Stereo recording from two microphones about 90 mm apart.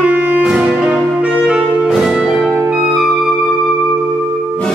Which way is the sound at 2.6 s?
10° right (ahead or behind).